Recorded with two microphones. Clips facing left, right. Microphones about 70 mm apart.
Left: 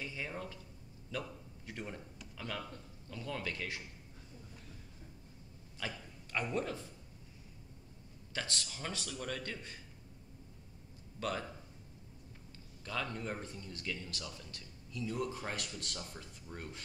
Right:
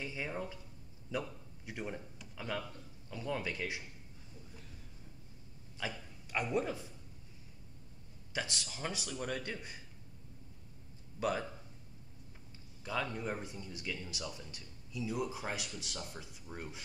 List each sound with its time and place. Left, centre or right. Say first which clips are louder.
0.0 s a man's voice: right 2 dB; centre
5.8 s speech: right 2 dB; centre
8.3 s speech: right 1 dB; centre
11.1 s a man's voice: right 3 dB; centre
12.8 s speech: right 2 dB; centre